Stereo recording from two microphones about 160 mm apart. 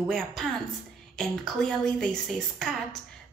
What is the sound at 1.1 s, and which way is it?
Speech, 5° left (ahead or behind).